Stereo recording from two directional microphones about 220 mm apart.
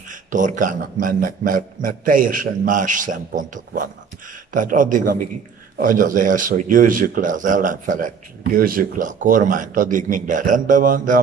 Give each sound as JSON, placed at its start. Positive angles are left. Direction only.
{"t": 0.1, "sound": "a man's voice", "side_deg": -35}